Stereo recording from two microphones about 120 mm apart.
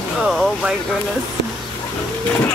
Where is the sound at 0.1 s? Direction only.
Centre (ahead or behind).